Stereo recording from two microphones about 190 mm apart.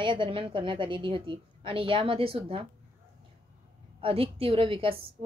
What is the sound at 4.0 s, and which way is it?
Speech, 30° right (ahead or behind).